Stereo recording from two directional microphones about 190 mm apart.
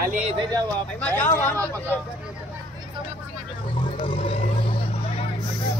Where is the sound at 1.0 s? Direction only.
10° left (ahead or behind).